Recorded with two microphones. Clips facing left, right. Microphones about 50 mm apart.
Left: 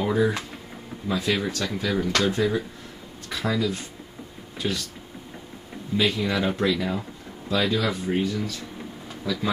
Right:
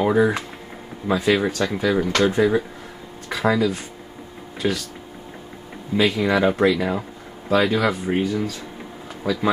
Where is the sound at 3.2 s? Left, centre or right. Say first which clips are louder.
Right 6 dB; right.